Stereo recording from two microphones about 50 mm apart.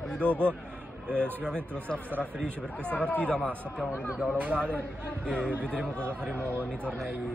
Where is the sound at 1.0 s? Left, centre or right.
Right.